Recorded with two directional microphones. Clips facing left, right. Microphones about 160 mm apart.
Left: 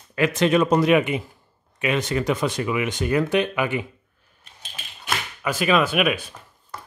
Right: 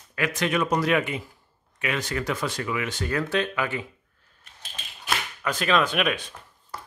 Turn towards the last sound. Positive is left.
turn(degrees=5)  # may be behind; listen again after turning